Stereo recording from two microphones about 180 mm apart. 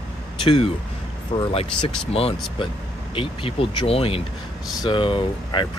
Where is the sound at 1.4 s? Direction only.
35° left (ahead or behind).